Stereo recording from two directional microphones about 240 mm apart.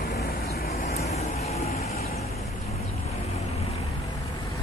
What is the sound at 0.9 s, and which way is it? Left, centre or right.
Vehicle, left.